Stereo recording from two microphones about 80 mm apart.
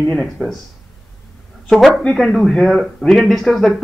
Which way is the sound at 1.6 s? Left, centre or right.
Centre.